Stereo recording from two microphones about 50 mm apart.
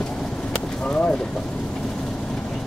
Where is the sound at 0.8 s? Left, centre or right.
Left.